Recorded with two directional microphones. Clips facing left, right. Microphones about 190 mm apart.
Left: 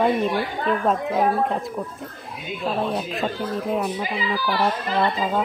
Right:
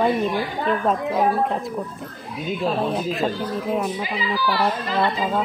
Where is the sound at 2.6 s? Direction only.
Centre (ahead or behind).